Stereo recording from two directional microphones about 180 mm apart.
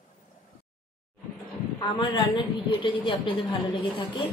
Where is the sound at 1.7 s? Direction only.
25° left (ahead or behind).